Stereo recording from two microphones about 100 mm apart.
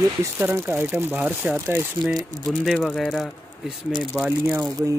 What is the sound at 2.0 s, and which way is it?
Speech, 5° right (ahead or behind).